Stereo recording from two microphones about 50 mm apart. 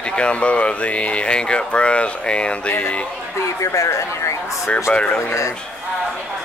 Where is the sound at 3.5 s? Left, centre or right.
Left.